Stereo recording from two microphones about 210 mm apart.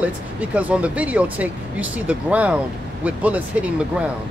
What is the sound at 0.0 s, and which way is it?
Speech, 5° right (ahead or behind).